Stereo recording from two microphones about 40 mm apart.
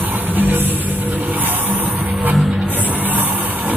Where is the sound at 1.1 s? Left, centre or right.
Right.